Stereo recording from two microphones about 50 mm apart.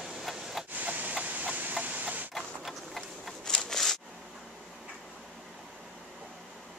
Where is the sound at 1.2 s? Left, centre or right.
Right.